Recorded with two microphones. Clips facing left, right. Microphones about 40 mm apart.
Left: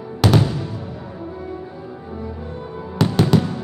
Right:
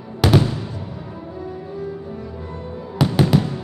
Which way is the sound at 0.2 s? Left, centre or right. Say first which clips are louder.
Even; centre.